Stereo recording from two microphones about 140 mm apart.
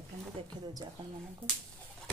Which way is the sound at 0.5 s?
30° right (ahead or behind).